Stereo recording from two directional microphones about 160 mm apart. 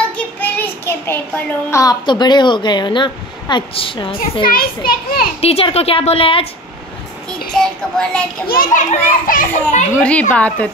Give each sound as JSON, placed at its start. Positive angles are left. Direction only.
{"t": 0.1, "sound": "a child's voice", "side_deg": 10}
{"t": 4.5, "sound": "a child's voice", "side_deg": 70}
{"t": 5.4, "sound": "a woman's voice", "side_deg": 40}
{"t": 7.2, "sound": "child singing", "side_deg": 5}
{"t": 8.5, "sound": "a child's voice", "side_deg": 60}
{"t": 9.9, "sound": "a woman's voice", "side_deg": 10}